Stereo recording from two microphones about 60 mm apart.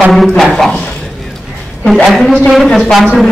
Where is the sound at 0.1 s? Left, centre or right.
Centre.